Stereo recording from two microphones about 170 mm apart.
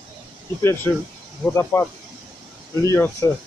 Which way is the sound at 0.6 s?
15° left (ahead or behind).